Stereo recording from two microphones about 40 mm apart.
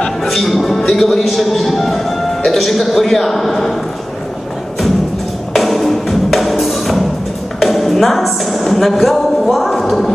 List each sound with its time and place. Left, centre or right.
0.2 s a man's voice: centre
5.5 s music: centre